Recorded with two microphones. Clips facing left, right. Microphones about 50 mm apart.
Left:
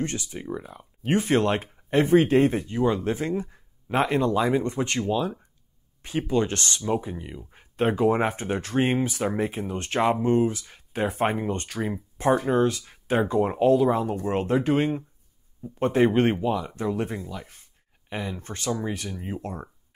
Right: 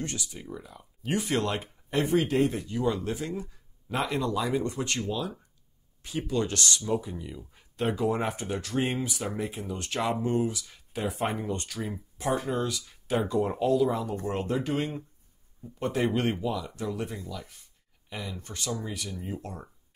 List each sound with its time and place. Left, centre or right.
0.0 s speech: left